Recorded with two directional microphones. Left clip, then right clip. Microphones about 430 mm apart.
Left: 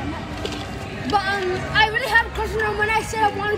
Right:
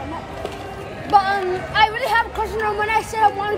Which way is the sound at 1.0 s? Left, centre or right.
Centre.